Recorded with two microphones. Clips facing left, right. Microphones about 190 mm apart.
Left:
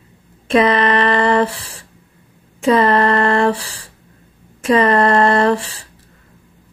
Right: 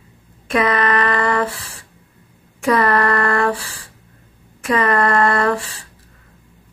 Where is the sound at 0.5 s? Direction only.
25° left (ahead or behind).